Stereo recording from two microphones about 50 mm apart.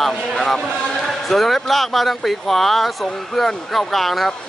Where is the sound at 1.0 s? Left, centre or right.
Centre.